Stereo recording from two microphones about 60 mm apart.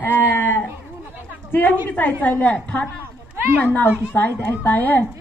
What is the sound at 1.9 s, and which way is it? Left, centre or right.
Speech, left.